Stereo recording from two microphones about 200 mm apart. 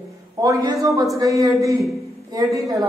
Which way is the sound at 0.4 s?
20° right (ahead or behind).